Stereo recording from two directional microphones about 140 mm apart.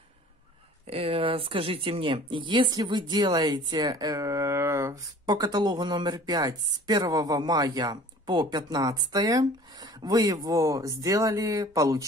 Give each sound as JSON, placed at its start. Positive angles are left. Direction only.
{"t": 0.8, "sound": "speech", "side_deg": -40}
{"t": 5.2, "sound": "speech", "side_deg": -30}